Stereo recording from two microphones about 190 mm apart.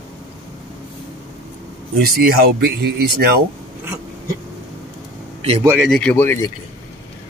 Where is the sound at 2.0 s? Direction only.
55° right (ahead or behind).